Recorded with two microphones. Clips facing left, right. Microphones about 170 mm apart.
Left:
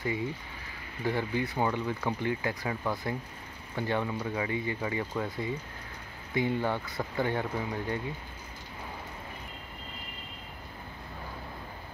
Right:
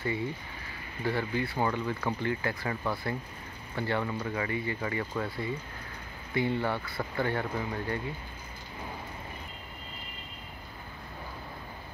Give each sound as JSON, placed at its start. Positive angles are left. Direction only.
{"t": 1.0, "sound": "speech", "side_deg": 15}